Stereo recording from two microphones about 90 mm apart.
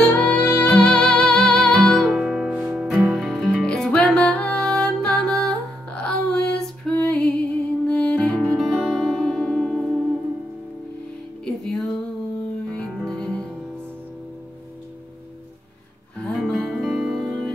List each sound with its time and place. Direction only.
0.0 s music: 15° left (ahead or behind)
0.7 s music: 5° left (ahead or behind)
8.5 s music: centre (ahead or behind)
11.4 s music: 5° left (ahead or behind)
16.3 s music: 5° left (ahead or behind)